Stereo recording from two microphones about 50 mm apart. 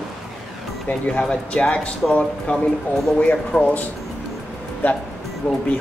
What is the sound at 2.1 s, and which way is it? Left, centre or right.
Speech, left.